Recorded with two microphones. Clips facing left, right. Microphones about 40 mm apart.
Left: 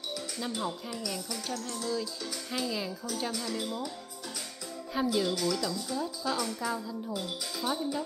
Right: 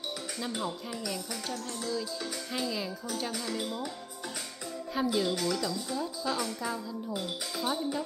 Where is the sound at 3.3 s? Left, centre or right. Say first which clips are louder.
Even; right.